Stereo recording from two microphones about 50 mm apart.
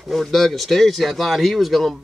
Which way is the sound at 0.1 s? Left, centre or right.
Centre.